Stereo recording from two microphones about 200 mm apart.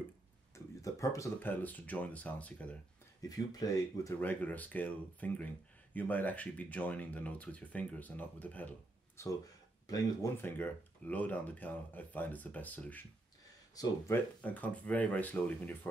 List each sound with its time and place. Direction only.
0.8 s speech: 15° left (ahead or behind)
3.2 s speech: 20° left (ahead or behind)